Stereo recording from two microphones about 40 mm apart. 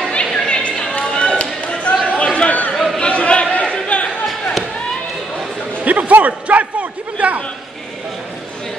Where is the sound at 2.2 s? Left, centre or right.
Left.